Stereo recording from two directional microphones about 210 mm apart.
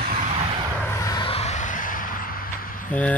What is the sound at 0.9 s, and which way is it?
Vehicle, 15° left (ahead or behind).